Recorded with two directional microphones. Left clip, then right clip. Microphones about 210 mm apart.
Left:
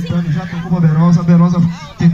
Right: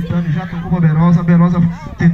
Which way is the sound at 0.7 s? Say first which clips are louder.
Even; 55° left (ahead or behind).